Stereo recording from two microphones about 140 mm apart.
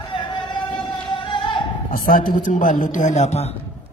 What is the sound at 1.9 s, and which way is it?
A man's voice, 75° left (ahead or behind).